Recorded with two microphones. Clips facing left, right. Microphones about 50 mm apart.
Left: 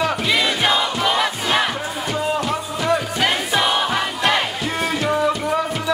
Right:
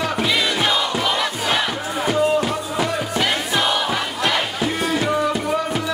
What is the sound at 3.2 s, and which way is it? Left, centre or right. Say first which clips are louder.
Crowd: left 1 dB; centre.